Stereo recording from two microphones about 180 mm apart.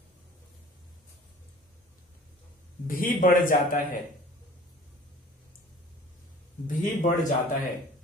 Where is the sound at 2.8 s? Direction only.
50° left (ahead or behind).